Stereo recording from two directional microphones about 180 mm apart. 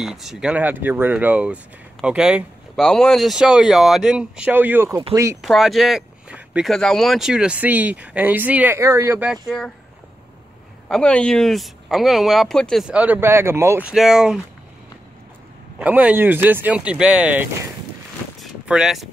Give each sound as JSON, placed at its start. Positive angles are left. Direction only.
{"t": 0.0, "sound": "speech", "side_deg": 0}
{"t": 5.4, "sound": "speech", "side_deg": 0}
{"t": 10.9, "sound": "speech", "side_deg": 5}
{"t": 15.8, "sound": "speech", "side_deg": -10}
{"t": 18.4, "sound": "vehicle", "side_deg": -5}